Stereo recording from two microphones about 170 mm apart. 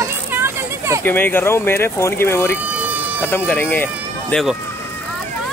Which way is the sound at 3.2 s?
10° left (ahead or behind).